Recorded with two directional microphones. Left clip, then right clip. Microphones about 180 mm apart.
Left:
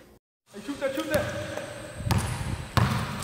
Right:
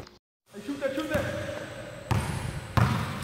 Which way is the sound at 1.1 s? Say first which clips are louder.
Left 5 dB; 45° left (ahead or behind).